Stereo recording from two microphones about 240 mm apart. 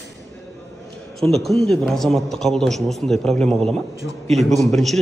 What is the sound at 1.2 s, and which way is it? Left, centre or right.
Speech, centre.